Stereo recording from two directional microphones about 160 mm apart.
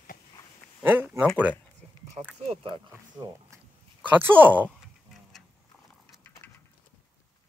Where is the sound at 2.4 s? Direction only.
35° right (ahead or behind).